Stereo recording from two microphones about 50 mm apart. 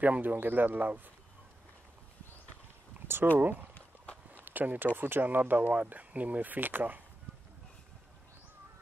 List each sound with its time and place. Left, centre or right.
0.0 s speech: right
3.3 s speech: right
3.7 s walk: left
4.5 s speech: right